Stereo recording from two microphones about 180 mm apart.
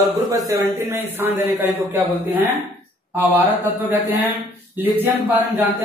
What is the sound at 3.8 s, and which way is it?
Speech, 10° right (ahead or behind).